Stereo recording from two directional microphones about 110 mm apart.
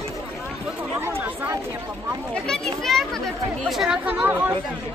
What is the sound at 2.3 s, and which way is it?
Speech, 5° left (ahead or behind).